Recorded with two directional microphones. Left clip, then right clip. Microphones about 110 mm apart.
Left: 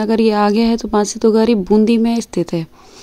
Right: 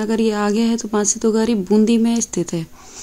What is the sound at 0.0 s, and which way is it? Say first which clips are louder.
Speech: left 5 dB; 45° left (ahead or behind).